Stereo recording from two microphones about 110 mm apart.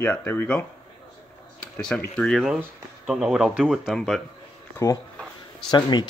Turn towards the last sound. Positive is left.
turn(degrees=40)  # may be behind; listen again after turning